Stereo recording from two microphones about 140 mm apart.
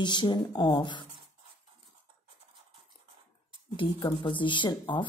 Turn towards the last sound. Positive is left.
turn(degrees=35)  # may be behind; listen again after turning